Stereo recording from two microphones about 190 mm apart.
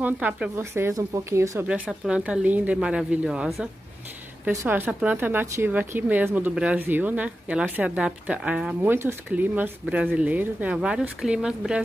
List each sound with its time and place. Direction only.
0.0 s speech: 10° right (ahead or behind)
1.7 s speech: 5° right (ahead or behind)
4.5 s speech: 15° right (ahead or behind)